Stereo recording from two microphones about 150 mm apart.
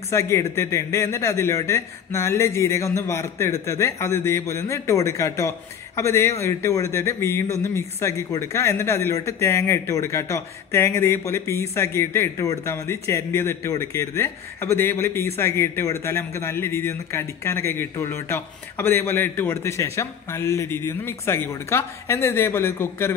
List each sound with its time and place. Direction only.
0.1 s a man's voice: 20° left (ahead or behind)